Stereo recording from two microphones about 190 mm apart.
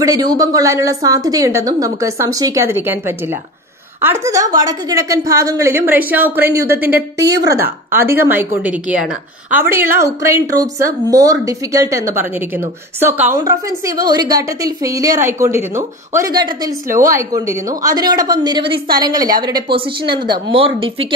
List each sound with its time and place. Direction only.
0.0 s a woman's voice: 20° right (ahead or behind)